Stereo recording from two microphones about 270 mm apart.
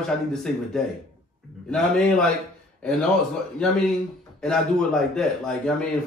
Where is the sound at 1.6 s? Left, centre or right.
Centre.